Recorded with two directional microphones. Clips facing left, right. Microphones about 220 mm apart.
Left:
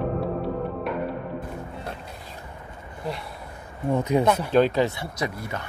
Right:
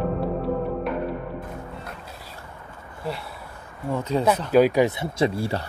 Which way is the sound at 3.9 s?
15° left (ahead or behind).